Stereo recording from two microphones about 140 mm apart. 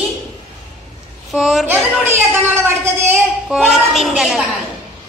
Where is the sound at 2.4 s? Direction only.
15° right (ahead or behind).